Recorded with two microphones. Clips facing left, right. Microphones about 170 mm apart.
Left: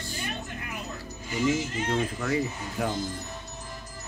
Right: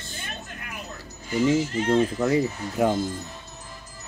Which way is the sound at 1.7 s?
30° right (ahead or behind).